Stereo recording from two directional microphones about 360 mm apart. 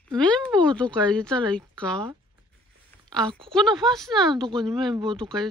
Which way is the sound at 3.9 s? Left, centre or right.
Centre.